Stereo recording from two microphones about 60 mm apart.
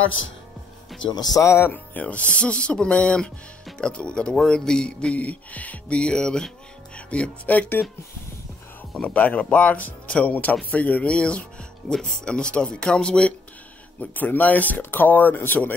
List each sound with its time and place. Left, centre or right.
1.4 s speech: left
1.7 s speech: left
7.1 s speech: left
9.0 s speech: left
11.9 s speech: centre
13.9 s speech: left